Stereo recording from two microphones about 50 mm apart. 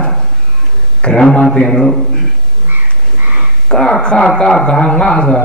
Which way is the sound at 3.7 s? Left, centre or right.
Centre.